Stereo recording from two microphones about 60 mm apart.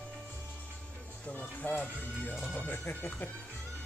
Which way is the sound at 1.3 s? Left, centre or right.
Left.